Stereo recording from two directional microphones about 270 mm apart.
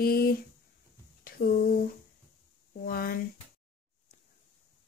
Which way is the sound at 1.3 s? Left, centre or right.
Left.